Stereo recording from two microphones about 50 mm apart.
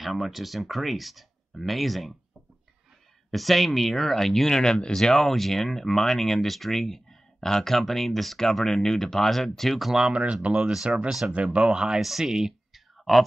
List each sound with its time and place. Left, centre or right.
0.0 s speech: centre
3.3 s speech: centre
10.0 s speech: right
11.1 s speech: centre
11.5 s speech: centre
12.0 s a sound: centre